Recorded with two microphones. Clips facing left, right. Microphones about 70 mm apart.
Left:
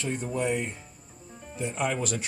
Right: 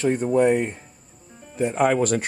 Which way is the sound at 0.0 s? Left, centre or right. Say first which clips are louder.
Right 11 dB; right.